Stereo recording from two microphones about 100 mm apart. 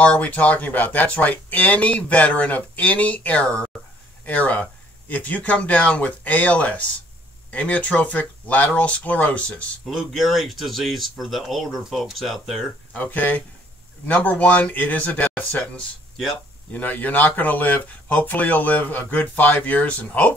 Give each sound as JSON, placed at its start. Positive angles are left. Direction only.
{"t": 0.0, "sound": "speech", "side_deg": 15}
{"t": 9.9, "sound": "speech", "side_deg": 0}
{"t": 12.9, "sound": "speech", "side_deg": 15}